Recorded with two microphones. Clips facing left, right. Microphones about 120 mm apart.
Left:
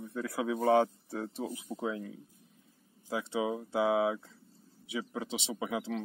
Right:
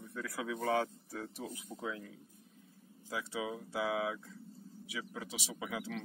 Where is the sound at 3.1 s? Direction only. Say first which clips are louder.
Left 6 dB; 30° left (ahead or behind).